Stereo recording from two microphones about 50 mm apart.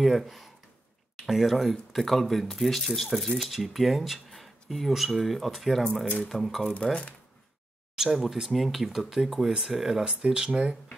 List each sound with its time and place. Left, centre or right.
0.0 s speech: centre
7.9 s speech: centre